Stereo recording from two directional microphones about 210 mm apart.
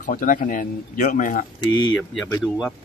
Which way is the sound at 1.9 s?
5° left (ahead or behind).